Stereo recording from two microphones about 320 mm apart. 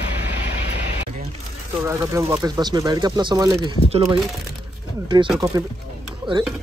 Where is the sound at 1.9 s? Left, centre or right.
Centre.